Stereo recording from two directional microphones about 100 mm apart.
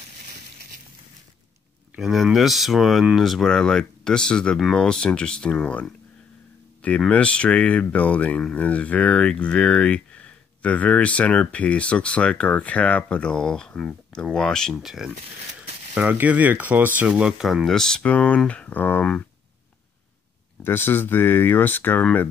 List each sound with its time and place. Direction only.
2.0 s speech: 5° right (ahead or behind)
16.0 s speech: 15° right (ahead or behind); by 19.2 s 15° left (ahead or behind)
20.6 s speech: 20° left (ahead or behind)